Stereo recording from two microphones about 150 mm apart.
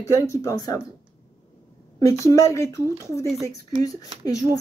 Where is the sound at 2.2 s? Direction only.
20° left (ahead or behind).